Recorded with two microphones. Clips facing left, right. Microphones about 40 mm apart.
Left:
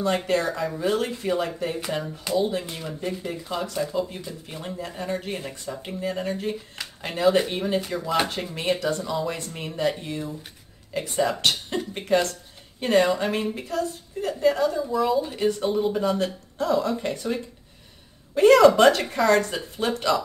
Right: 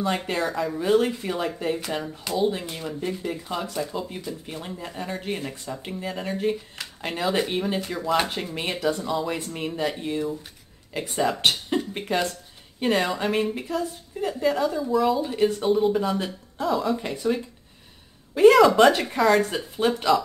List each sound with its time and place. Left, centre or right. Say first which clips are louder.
0.0 s a woman's voice: left 2 dB; centre
12.8 s a woman's voice: left 3 dB; centre
18.3 s a woman's voice: even; centre